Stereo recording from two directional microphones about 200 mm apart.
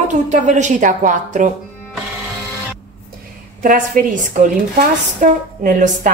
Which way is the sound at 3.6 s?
45° right (ahead or behind).